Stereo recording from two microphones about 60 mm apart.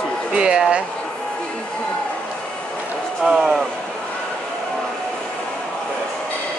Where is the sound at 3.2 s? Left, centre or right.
Centre.